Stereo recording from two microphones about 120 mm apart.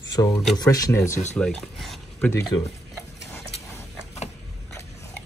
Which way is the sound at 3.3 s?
20° left (ahead or behind).